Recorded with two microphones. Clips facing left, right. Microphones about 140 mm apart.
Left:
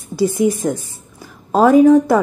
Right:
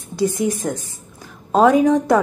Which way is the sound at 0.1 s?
5° left (ahead or behind).